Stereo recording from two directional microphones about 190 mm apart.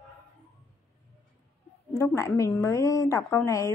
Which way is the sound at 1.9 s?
15° left (ahead or behind).